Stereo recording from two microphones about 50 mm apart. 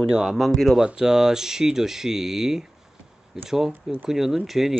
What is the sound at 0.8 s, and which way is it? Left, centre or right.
Speech, centre.